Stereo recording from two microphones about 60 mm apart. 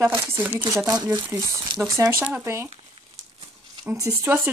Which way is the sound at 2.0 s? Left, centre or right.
Right.